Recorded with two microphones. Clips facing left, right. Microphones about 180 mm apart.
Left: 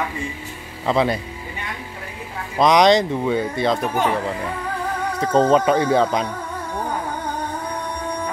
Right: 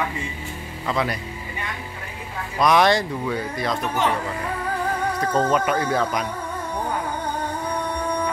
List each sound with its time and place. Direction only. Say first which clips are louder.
0.8 s speech: left 6 dB; 25° left (ahead or behind)
2.6 s speech: left 4 dB; 20° left (ahead or behind)
5.2 s speech: left 6 dB; 30° left (ahead or behind)